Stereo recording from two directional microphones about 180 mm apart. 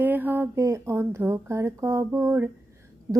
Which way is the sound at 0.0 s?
10° right (ahead or behind).